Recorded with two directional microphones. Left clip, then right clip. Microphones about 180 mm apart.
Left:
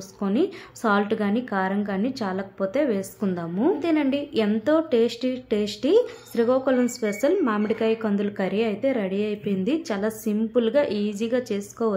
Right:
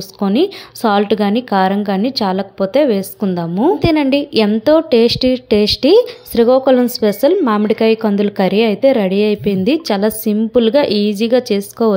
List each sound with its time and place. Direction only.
0.2 s a woman's voice: 35° right (ahead or behind)